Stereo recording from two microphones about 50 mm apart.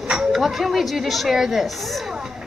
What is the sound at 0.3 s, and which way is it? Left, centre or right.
A woman's voice, centre.